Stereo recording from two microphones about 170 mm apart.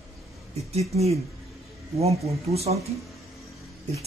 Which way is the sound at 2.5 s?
35° right (ahead or behind).